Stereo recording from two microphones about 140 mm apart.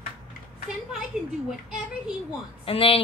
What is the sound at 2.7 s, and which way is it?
Speech, 40° left (ahead or behind).